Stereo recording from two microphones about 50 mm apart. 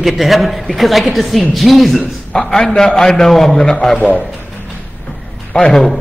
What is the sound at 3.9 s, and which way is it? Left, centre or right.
Speech, left.